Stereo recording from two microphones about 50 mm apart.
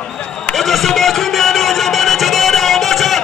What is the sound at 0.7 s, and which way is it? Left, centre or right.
Music, centre.